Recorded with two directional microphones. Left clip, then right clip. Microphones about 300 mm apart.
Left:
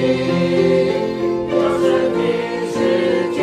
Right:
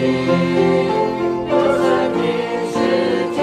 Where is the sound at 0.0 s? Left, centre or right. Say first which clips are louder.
Even; centre.